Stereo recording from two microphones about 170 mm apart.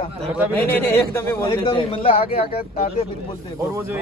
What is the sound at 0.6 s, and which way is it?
A man's voice, 15° left (ahead or behind).